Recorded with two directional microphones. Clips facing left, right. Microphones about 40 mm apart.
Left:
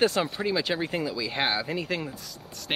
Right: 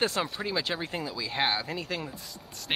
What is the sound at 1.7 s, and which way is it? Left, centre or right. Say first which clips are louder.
Speech: left 4 dB; centre.